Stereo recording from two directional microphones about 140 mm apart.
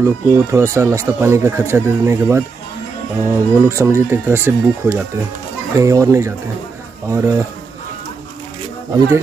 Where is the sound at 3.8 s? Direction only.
20° right (ahead or behind).